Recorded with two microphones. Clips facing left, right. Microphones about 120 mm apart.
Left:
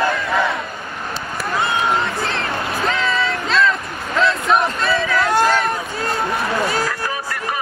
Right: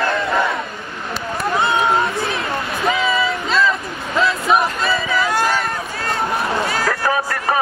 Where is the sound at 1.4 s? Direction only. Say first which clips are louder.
Right 3 dB; 25° right (ahead or behind).